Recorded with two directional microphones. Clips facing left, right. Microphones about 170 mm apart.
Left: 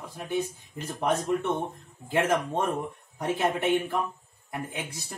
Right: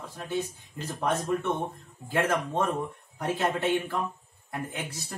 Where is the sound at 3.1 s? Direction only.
20° left (ahead or behind).